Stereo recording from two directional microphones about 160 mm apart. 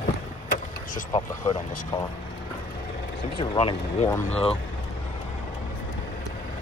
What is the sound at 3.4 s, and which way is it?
Speech, 35° left (ahead or behind).